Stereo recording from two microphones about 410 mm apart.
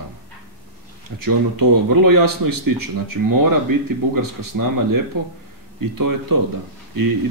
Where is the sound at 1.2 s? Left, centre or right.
Right.